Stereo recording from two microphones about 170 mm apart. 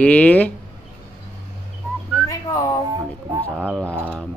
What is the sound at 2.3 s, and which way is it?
Whistling, 20° left (ahead or behind).